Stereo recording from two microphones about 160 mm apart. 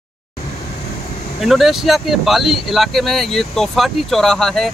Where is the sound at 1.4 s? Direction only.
Centre (ahead or behind).